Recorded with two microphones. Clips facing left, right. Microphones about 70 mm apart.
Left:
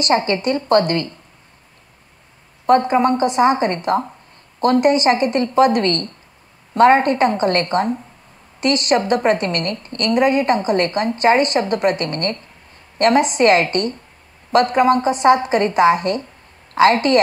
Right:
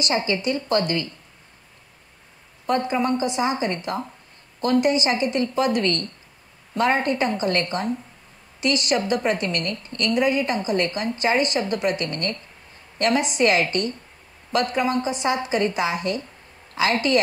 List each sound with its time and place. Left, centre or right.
0.0 s a woman's voice: left
2.6 s a woman's voice: left